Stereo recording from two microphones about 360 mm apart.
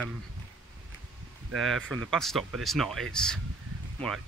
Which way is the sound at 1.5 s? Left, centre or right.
Centre.